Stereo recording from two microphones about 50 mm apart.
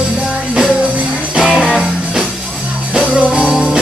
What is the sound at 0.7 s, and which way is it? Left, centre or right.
Music, right.